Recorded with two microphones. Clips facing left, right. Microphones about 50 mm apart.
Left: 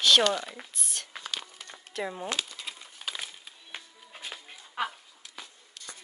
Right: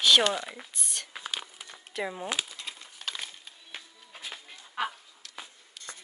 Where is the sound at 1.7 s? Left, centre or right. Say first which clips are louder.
Even; centre.